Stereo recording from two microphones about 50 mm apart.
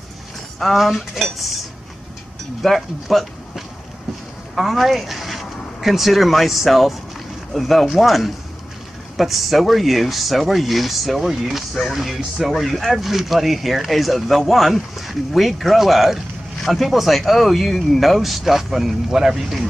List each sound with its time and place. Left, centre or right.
0.6 s speech: centre
2.6 s speech: centre